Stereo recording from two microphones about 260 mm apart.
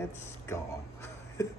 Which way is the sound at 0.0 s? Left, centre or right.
Centre.